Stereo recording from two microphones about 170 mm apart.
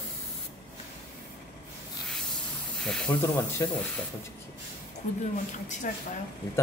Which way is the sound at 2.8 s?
5° left (ahead or behind).